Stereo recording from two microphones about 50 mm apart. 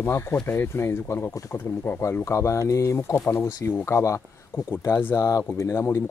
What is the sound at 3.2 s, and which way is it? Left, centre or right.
Speech, left.